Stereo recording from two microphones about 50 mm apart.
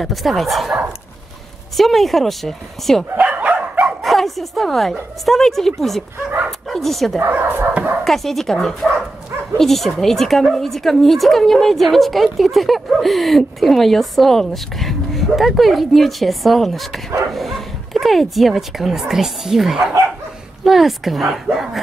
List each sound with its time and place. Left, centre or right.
0.0 s speech: centre
1.8 s speech: centre
3.2 s dog: right
4.0 s a woman's voice: centre
7.2 s speech: right
8.0 s speech: centre